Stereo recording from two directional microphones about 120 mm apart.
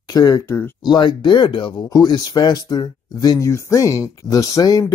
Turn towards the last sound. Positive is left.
turn(degrees=30)  # may be behind; listen again after turning